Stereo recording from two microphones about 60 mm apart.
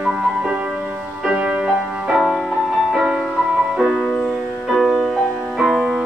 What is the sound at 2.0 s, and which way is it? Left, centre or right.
Music, centre.